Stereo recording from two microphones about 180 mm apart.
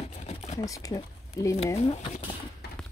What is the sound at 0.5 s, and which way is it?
Speech, 20° left (ahead or behind).